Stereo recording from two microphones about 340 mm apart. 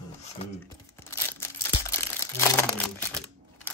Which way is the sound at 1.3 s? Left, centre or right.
Centre.